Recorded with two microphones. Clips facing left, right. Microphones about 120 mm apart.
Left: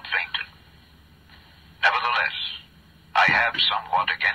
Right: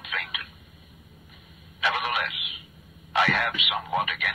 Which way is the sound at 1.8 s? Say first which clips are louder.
Left 4 dB; 60° left (ahead or behind).